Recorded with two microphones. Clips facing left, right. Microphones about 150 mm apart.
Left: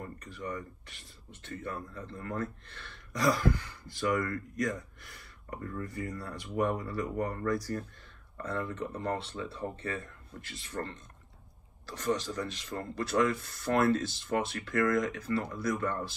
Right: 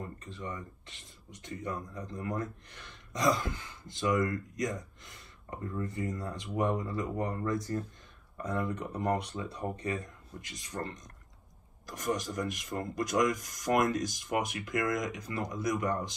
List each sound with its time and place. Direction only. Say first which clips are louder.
0.2 s speech: left 2 dB; 20° right (ahead or behind)